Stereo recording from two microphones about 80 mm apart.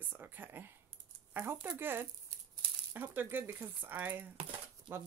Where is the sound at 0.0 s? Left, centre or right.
Right.